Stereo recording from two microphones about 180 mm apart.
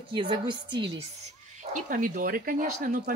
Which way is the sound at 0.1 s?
25° right (ahead or behind).